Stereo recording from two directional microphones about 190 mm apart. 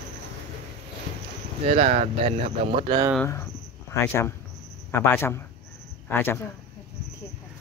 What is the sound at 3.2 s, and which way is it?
Speech, 15° left (ahead or behind).